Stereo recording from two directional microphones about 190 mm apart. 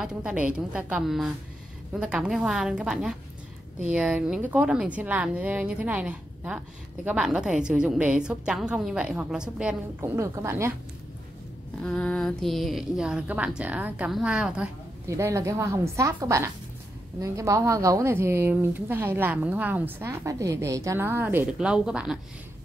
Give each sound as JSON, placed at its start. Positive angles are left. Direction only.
{"t": 0.0, "sound": "a woman's voice", "side_deg": -5}
{"t": 11.8, "sound": "a woman's voice", "side_deg": 5}